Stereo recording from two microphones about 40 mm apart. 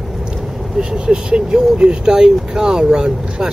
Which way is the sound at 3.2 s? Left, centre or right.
Centre.